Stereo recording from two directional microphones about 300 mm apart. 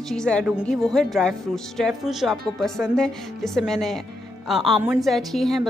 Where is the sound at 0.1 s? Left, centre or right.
Centre.